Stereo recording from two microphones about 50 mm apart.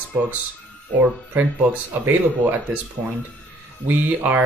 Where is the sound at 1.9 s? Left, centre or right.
Right.